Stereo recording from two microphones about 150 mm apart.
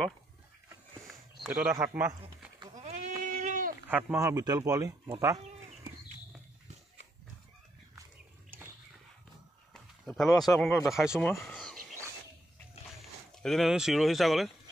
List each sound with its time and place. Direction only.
1.4 s speech: 5° right (ahead or behind)
2.8 s goat: 50° right (ahead or behind)
3.9 s speech: 20° right (ahead or behind)
10.0 s speech: centre (ahead or behind)
11.3 s a sound: centre (ahead or behind)
13.4 s speech: centre (ahead or behind)